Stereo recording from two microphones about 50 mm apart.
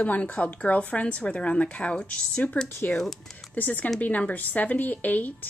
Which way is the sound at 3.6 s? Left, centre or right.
Left.